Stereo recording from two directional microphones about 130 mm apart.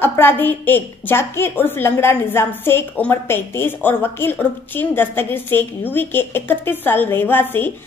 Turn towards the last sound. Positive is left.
turn(degrees=15)  # may be behind; listen again after turning